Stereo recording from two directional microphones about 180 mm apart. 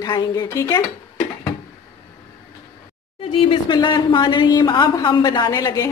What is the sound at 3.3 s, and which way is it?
A woman's voice, 30° left (ahead or behind).